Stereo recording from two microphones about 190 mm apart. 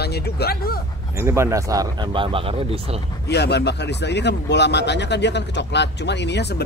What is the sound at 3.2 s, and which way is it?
Speech, 60° left (ahead or behind).